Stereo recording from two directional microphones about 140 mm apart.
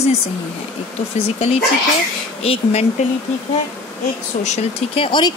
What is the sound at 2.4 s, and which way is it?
Speech, 45° left (ahead or behind).